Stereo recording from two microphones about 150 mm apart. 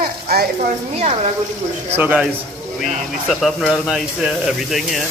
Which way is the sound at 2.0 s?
10° right (ahead or behind).